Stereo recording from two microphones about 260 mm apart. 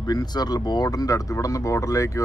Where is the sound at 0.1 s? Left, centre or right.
Centre.